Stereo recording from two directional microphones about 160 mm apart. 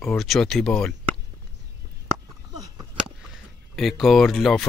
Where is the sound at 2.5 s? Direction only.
25° right (ahead or behind).